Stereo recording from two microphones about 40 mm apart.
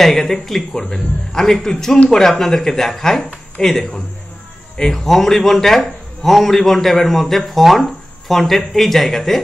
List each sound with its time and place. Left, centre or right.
0.0 s a man's voice: centre
5.0 s a man's voice: centre